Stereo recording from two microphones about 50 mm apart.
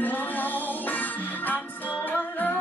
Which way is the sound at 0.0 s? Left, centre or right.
Left.